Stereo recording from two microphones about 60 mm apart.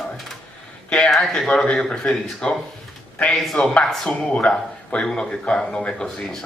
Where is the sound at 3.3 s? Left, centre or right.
Centre.